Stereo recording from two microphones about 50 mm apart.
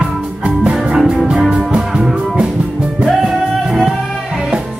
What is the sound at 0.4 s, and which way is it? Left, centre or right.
Music, right.